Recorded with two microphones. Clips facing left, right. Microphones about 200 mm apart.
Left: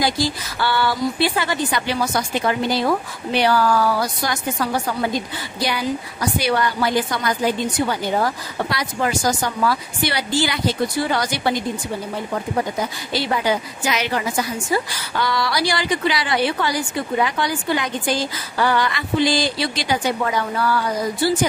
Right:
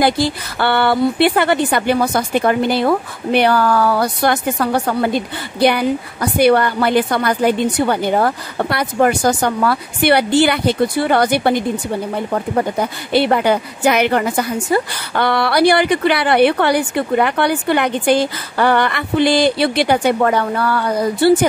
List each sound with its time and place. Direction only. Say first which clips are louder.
0.0 s a woman's voice: right 5 dB; 60° right (ahead or behind)
12.7 s a woman's voice: right 7 dB; 60° right (ahead or behind)